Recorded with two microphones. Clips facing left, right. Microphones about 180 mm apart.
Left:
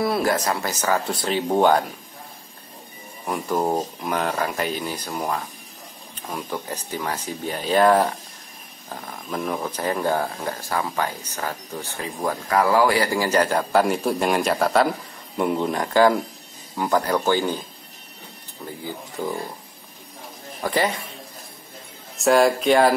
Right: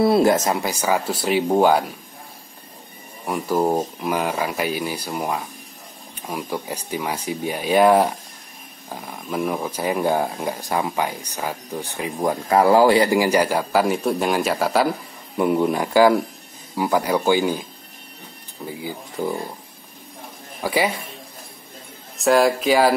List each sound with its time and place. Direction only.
0.0 s speech: 25° right (ahead or behind); by 1.9 s 10° right (ahead or behind)
3.3 s speech: 5° right (ahead or behind)
18.7 s speech: 10° right (ahead or behind)
20.6 s speech: 10° right (ahead or behind)
22.1 s speech: centre (ahead or behind)